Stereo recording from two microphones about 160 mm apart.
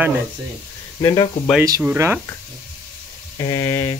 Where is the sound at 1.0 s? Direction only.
25° left (ahead or behind).